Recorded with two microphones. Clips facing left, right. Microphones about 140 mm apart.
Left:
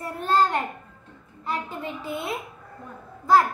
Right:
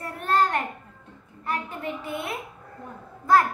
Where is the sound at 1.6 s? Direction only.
30° left (ahead or behind).